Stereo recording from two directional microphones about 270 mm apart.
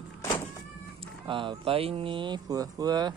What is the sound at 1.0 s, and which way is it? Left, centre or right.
Speech, centre.